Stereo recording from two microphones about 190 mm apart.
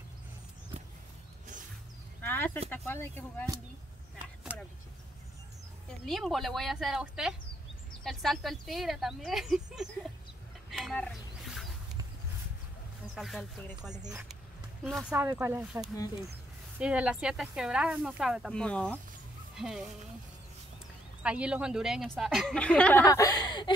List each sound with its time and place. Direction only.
2.2 s chicken: 10° left (ahead or behind)
2.7 s speech: 10° left (ahead or behind)
5.9 s speech: centre (ahead or behind)
10.7 s a sound: centre (ahead or behind)
13.1 s speech: centre (ahead or behind)
15.1 s speech: 10° right (ahead or behind)
21.2 s speech: 5° right (ahead or behind)
23.0 s speech: 20° left (ahead or behind)